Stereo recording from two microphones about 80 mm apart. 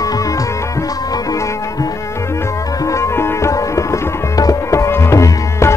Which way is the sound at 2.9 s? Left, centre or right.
Left.